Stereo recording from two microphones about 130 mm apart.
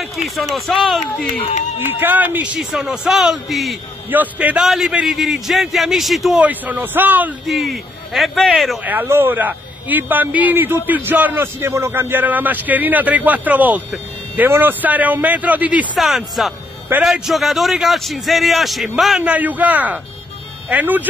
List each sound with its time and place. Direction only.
0.4 s a man's voice: centre (ahead or behind)
1.4 s speech: 65° left (ahead or behind)
1.9 s a man's voice: 15° right (ahead or behind)
4.1 s a man's voice: 10° right (ahead or behind)
6.4 s a man's voice: 15° right (ahead or behind)
7.4 s a man's voice: centre (ahead or behind)
8.8 s a man's voice: 15° right (ahead or behind)